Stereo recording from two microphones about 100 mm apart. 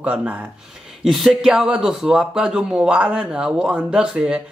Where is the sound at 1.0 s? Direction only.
5° right (ahead or behind).